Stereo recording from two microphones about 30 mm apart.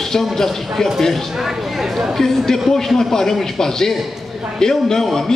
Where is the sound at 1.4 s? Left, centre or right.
Centre.